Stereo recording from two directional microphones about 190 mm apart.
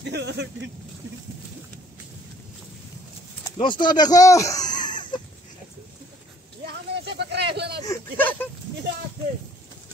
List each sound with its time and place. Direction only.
0.0 s speech: 65° right (ahead or behind)
3.5 s speech: 25° left (ahead or behind)
6.6 s a sound: 60° right (ahead or behind)
7.8 s speech: 10° left (ahead or behind)